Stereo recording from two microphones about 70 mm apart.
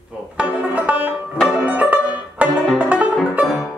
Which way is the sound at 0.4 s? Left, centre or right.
Centre.